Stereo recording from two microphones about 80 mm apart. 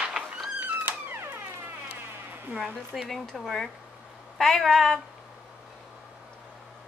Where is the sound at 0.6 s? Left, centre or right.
Right.